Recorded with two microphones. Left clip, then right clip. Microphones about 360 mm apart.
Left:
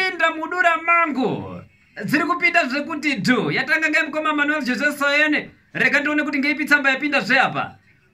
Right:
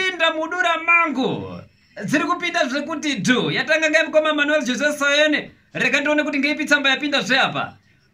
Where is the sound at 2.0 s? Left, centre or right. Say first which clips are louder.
Left 1 dB; centre.